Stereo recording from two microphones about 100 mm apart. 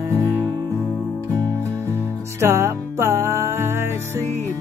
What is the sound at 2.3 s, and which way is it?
Music, 25° right (ahead or behind).